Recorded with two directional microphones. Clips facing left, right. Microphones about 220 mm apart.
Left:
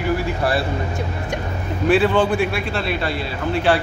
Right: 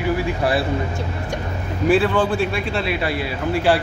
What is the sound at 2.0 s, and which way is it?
Speech, 25° left (ahead or behind).